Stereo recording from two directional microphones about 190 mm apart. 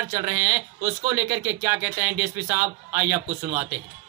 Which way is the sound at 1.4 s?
15° right (ahead or behind).